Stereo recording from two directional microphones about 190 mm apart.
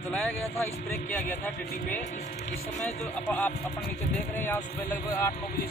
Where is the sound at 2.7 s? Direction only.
10° left (ahead or behind).